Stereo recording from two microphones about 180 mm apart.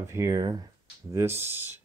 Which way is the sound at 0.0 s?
15° right (ahead or behind).